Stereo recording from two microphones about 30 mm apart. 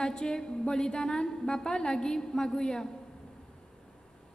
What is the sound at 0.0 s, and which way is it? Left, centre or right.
A man's voice, left.